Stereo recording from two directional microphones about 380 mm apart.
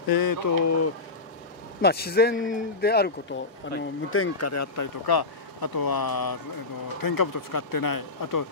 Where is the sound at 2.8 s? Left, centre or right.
Left.